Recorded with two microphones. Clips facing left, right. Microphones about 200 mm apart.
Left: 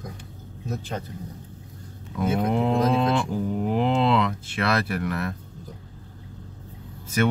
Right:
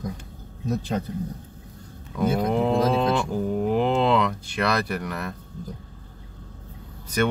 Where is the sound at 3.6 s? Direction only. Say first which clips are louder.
Right 1 dB; centre (ahead or behind).